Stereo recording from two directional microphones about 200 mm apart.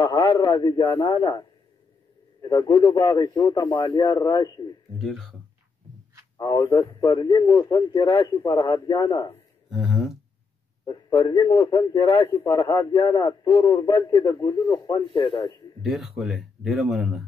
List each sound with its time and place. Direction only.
0.0 s a man's voice: 20° left (ahead or behind)
2.4 s a man's voice: 20° left (ahead or behind)
4.9 s speech: centre (ahead or behind)
6.3 s a man's voice: 20° left (ahead or behind)
9.7 s a sound: centre (ahead or behind)
10.9 s a man's voice: 20° left (ahead or behind)
15.8 s speech: centre (ahead or behind)